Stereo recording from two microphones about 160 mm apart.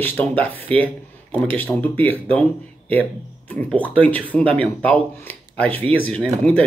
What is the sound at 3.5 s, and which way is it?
Speech, 10° left (ahead or behind).